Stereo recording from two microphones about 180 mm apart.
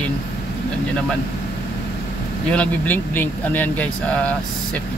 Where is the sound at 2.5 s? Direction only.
10° left (ahead or behind).